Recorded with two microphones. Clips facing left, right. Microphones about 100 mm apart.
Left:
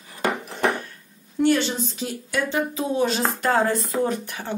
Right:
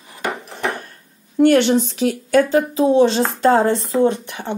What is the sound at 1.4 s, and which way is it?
Speech, 65° right (ahead or behind).